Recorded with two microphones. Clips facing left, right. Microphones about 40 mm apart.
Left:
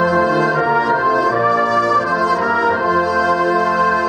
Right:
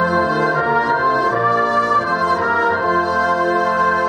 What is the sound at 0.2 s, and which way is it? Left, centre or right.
Brass instrument, left.